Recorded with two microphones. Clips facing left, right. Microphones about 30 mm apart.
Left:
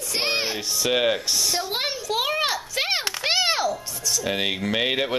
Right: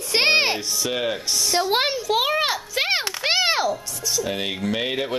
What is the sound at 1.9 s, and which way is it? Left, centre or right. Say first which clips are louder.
Children playing: right 4 dB; centre.